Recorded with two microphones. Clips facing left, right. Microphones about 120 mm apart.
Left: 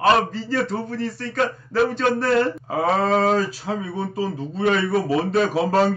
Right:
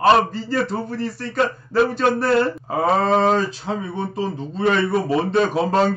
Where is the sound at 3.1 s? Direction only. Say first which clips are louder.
Right 2 dB; 30° right (ahead or behind).